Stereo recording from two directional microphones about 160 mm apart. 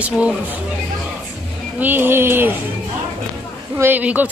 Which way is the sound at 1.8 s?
10° right (ahead or behind).